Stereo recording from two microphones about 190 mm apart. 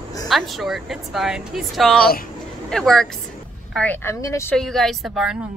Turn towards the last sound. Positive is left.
turn(degrees=0)  # may be behind; listen again after turning